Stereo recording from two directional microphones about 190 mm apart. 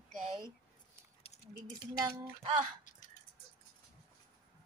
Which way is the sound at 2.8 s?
45° left (ahead or behind).